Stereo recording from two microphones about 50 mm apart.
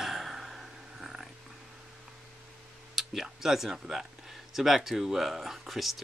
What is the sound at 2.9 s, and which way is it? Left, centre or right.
Speech, centre.